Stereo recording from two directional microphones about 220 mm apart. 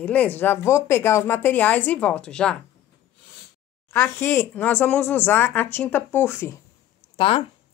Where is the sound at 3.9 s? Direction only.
10° left (ahead or behind).